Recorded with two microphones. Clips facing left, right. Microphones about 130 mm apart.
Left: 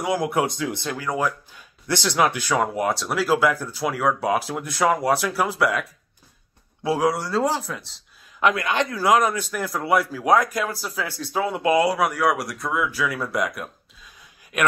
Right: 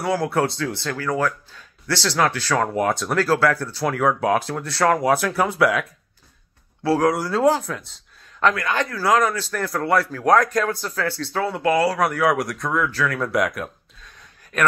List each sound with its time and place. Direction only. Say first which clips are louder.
0.0 s a man's voice: right 1 dB; 15° left (ahead or behind)
2.7 s a man's voice: right 3 dB; centre (ahead or behind)
4.9 s speech: right 2 dB; centre (ahead or behind)
7.0 s speech: right 1 dB; centre (ahead or behind)
8.4 s a man's voice: even; 15° left (ahead or behind)
12.0 s speech: right 2 dB; centre (ahead or behind)